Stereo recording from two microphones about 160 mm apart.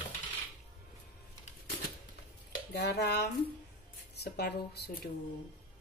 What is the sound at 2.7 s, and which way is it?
Speech, 90° left.